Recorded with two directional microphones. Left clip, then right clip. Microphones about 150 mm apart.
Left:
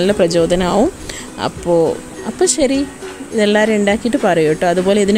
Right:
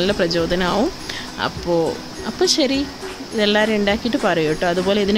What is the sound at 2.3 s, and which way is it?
Speech, 30° left (ahead or behind).